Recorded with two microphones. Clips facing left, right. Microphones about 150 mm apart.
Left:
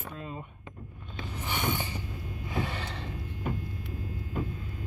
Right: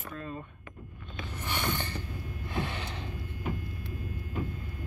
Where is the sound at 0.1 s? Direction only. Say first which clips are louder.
Right 3 dB; 20° left (ahead or behind).